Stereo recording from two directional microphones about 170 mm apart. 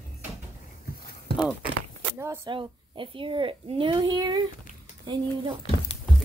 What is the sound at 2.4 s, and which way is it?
A child's voice, 30° right (ahead or behind).